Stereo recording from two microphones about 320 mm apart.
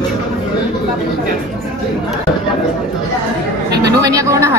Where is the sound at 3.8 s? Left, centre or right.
Centre.